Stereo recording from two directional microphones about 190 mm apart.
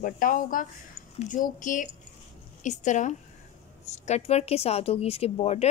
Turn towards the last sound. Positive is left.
turn(degrees=35)  # may be behind; listen again after turning